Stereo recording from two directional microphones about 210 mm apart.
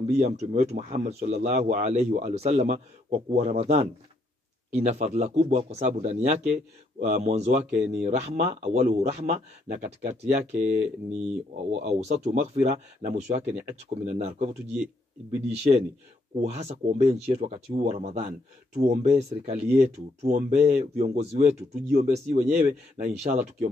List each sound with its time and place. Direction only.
0.0 s a man's voice: 30° right (ahead or behind)